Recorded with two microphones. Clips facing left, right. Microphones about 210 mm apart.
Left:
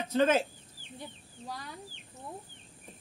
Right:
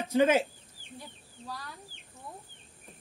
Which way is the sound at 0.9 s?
20° left (ahead or behind).